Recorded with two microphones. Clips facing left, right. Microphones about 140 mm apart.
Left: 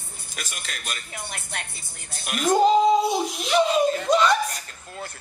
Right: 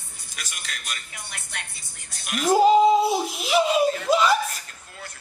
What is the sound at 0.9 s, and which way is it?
Speech, 35° left (ahead or behind).